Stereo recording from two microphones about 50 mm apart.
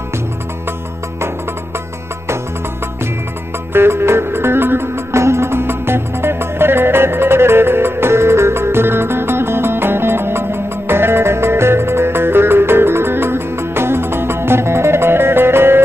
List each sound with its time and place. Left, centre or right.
3.7 s music: right